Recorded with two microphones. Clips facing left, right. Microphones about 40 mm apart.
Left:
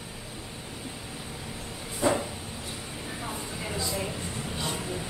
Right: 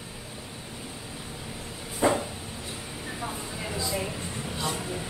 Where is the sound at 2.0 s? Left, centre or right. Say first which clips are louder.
Right 2 dB; right.